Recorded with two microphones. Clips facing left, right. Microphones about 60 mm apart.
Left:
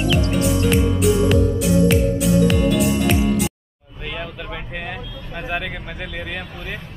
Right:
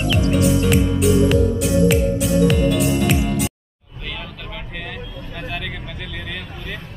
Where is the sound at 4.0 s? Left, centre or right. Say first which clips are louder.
Left 3 dB; centre.